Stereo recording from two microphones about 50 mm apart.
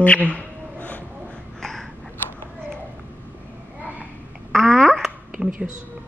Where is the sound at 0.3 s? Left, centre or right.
Left.